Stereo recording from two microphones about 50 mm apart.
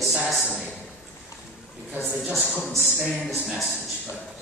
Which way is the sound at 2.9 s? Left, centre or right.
Centre.